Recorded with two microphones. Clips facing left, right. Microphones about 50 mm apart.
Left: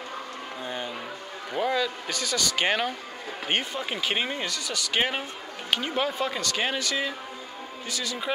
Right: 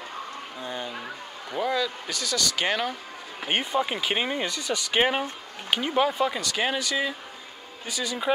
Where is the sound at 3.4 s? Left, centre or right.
Centre.